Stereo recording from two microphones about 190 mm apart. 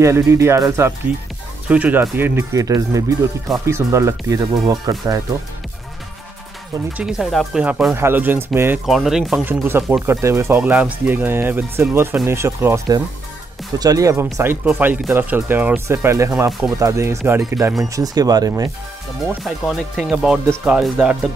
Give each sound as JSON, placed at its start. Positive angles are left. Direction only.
{"t": 0.0, "sound": "speech", "side_deg": -15}
{"t": 6.9, "sound": "speech", "side_deg": -5}
{"t": 19.2, "sound": "speech", "side_deg": 0}